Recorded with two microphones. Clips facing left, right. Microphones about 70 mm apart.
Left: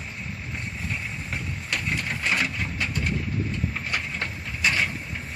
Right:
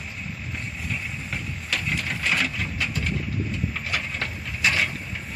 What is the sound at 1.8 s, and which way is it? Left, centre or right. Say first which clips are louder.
Printer: right 1 dB; centre.